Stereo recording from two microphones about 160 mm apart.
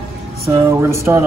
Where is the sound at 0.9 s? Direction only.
15° right (ahead or behind).